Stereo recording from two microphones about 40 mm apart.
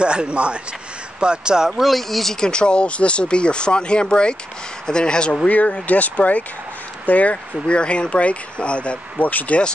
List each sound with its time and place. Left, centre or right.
0.0 s speech: right
1.8 s speech: centre
2.4 s speech: left
5.5 s speech: left
7.6 s speech: left
9.2 s speech: left